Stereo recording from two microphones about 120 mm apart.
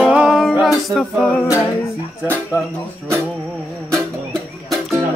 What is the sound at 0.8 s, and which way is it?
A capella, centre (ahead or behind).